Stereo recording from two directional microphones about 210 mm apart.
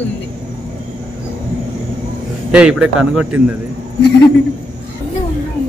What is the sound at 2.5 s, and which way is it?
Speech, 5° right (ahead or behind).